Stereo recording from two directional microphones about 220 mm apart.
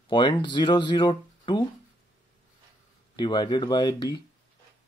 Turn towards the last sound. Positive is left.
turn(degrees=20)  # may be behind; listen again after turning